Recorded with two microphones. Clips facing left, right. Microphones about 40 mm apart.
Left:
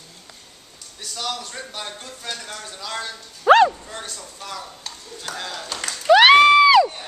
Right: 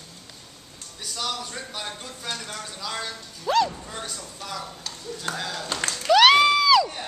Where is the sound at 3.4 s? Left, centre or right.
Left.